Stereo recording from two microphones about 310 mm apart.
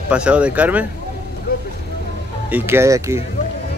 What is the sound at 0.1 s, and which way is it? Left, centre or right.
Speech, centre.